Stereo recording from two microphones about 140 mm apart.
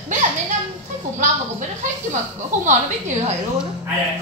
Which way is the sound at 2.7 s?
60° right (ahead or behind).